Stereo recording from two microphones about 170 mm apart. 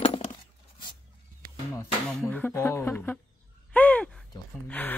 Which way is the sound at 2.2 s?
10° left (ahead or behind).